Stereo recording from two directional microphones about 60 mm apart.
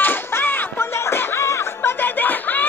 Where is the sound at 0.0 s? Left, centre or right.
Left.